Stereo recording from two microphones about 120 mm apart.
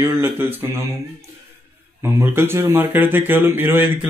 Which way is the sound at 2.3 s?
20° right (ahead or behind).